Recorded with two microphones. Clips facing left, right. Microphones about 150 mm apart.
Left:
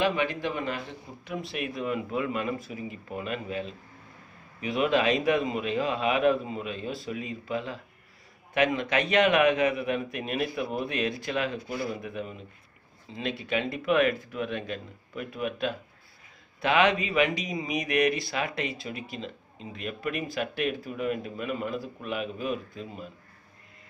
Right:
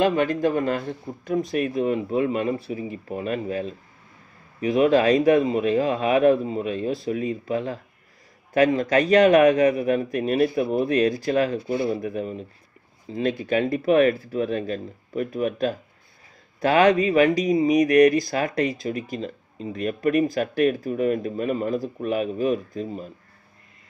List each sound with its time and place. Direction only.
0.0 s speech: 45° right (ahead or behind)
11.7 s speech: 25° right (ahead or behind)
12.0 s speech: 40° right (ahead or behind)